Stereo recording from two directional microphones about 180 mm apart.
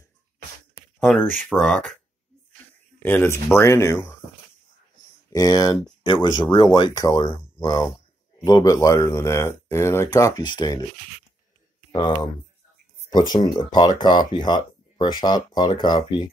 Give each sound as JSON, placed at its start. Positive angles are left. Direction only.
{"t": 0.9, "sound": "speech", "side_deg": 5}
{"t": 3.0, "sound": "speech", "side_deg": 10}
{"t": 5.3, "sound": "speech", "side_deg": 20}
{"t": 13.1, "sound": "speech", "side_deg": 25}